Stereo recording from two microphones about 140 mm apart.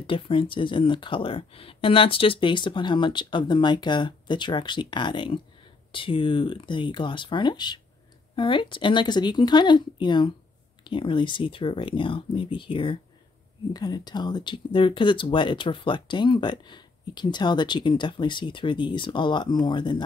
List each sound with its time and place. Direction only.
0.0 s speech: 40° left (ahead or behind)